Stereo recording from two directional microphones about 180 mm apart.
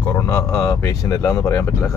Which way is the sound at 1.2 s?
15° left (ahead or behind).